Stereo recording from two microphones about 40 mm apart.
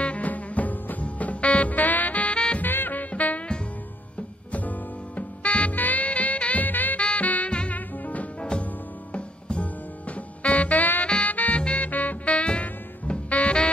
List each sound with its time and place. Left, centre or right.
0.0 s music: left
2.3 s music: left
2.6 s music: left
4.5 s music: left
7.0 s music: left
7.2 s music: left